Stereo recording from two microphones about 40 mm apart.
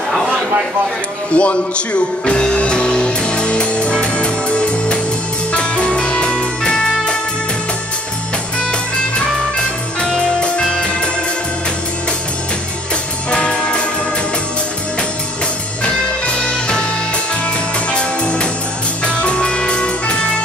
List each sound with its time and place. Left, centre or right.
1.3 s music: left
9.1 s music: left
13.3 s music: left
15.8 s music: left
17.9 s music: left